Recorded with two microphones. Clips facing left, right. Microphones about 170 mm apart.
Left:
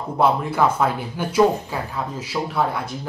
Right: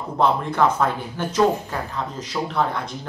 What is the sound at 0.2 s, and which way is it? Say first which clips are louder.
Speech: left 1 dB; 5° left (ahead or behind).